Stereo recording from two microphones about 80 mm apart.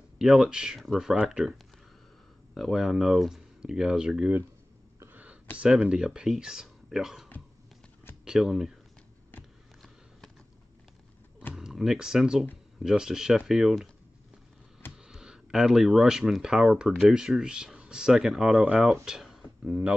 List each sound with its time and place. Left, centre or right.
0.2 s speech: centre
2.5 s speech: centre
5.1 s a sound: centre
5.7 s speech: centre
8.3 s speech: centre
11.5 s speech: centre
15.0 s speech: centre
19.4 s a sound: centre